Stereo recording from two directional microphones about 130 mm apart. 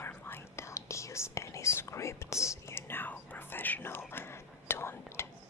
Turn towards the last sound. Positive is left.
turn(degrees=20)  # may be behind; listen again after turning